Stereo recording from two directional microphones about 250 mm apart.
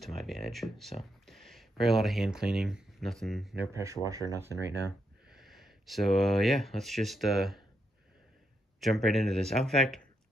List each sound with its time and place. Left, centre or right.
0.0 s speech: centre
3.7 s speech: centre
8.8 s speech: centre